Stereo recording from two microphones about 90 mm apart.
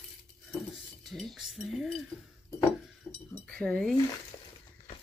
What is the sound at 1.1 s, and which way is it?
Speech, centre (ahead or behind).